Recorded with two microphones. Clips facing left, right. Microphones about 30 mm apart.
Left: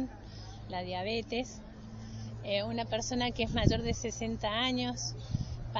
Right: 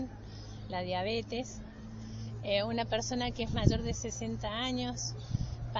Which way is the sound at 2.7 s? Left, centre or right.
Centre.